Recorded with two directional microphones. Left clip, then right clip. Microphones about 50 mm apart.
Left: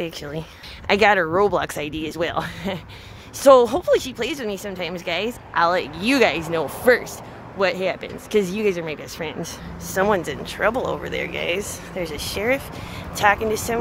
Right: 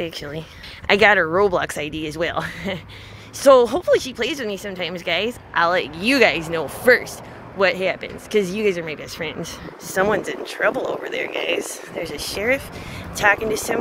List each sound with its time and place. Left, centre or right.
0.0 s speech: left
0.8 s speech: centre
1.3 s speech: centre
1.7 s speech: left
2.4 s speech: centre
3.3 s speech: left
3.6 s speech: left
4.2 s speech: centre
5.5 s speech: left
7.7 s speech: centre
8.3 s speech: left
8.5 s speech: left
10.0 s speech: left
13.1 s speech: left